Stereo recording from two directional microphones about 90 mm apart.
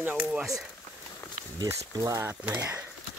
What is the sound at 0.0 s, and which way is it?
Speech, 20° right (ahead or behind).